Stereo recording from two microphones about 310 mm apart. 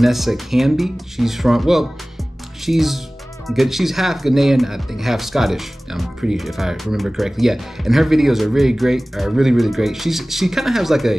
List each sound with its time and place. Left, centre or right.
0.0 s speech: centre